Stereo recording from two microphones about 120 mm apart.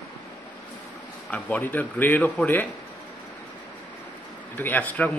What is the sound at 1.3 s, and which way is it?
A man's voice, 15° left (ahead or behind).